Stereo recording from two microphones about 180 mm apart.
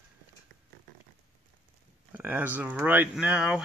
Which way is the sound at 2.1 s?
10° right (ahead or behind).